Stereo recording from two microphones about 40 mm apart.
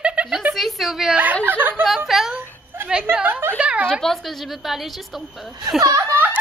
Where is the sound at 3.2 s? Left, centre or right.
Right.